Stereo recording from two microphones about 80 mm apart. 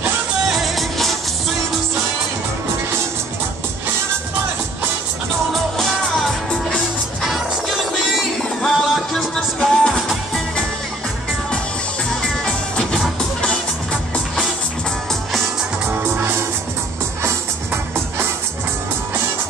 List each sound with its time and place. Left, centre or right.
0.7 s music: centre
7.2 s music: centre
12.4 s music: centre
15.9 s music: right